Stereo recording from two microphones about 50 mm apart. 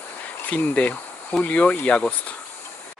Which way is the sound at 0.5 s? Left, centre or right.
Left.